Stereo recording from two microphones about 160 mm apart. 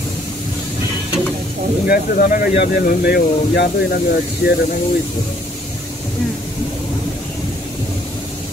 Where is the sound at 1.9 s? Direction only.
65° left (ahead or behind).